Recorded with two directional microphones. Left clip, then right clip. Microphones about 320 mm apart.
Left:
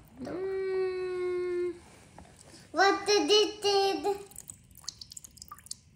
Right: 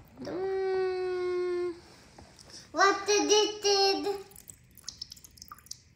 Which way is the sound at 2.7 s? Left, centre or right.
Left.